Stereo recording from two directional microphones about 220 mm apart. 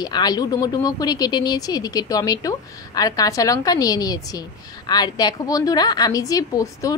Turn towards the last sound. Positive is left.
turn(degrees=15)  # may be behind; listen again after turning